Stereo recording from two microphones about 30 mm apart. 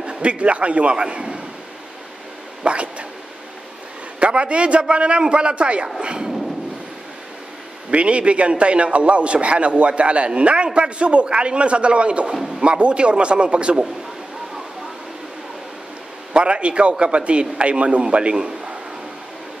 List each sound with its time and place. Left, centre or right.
0.2 s a man's voice: right
2.6 s a man's voice: right
4.2 s a man's voice: right
5.9 s speech: right
7.9 s a man's voice: right
16.3 s a man's voice: right